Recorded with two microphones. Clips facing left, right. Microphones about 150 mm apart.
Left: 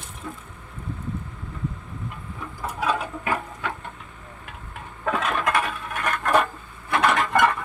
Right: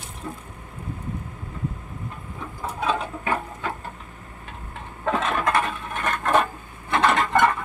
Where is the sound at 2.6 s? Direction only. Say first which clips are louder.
Even; 25° right (ahead or behind).